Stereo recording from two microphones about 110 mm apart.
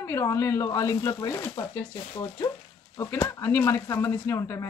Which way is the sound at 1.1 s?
40° left (ahead or behind).